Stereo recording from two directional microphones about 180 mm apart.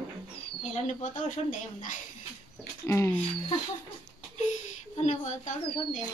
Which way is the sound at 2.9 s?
15° left (ahead or behind).